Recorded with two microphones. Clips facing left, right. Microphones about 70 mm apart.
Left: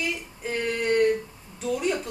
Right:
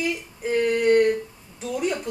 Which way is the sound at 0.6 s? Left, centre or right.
Centre.